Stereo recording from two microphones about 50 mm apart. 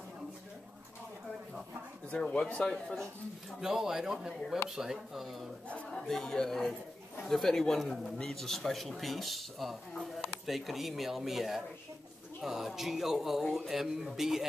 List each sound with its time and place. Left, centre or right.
2.3 s speech: left
3.6 s speech: centre
5.9 s speech: centre